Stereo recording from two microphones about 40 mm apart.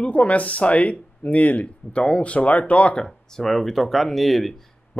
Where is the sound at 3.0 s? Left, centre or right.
Centre.